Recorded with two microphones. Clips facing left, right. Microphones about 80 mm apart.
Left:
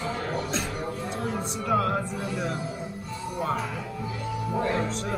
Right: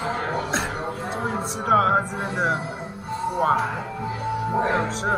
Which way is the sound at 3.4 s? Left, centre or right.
Right.